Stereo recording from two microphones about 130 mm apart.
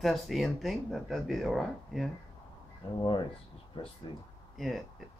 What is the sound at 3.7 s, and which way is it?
Speech, 40° left (ahead or behind).